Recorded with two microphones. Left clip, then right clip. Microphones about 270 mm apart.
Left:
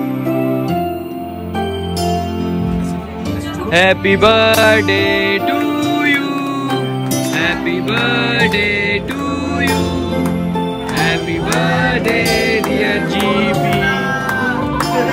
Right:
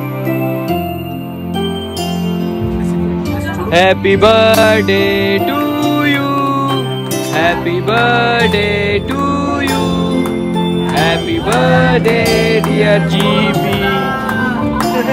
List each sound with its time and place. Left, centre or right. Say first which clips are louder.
3.7 s music: right 2 dB; centre
7.3 s music: right 5 dB; centre
11.5 s music: right 5 dB; centre